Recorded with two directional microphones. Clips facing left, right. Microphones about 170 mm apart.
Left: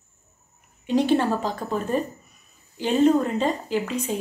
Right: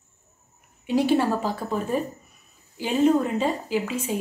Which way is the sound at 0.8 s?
10° right (ahead or behind).